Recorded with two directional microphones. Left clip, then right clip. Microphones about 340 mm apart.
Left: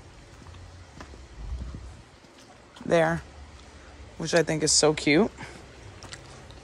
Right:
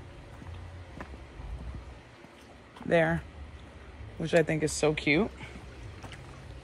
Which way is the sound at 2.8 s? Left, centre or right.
Centre.